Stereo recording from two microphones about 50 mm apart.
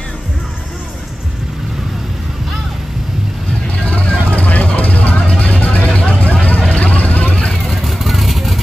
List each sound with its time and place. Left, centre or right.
3.7 s vehicle: left
7.6 s vehicle: centre